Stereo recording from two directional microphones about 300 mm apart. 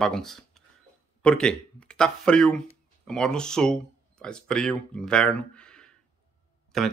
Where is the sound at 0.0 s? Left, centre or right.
Centre.